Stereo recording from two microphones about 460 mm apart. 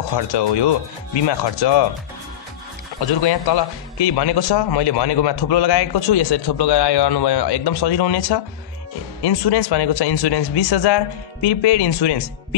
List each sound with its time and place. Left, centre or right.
0.3 s speech: left
3.2 s speech: left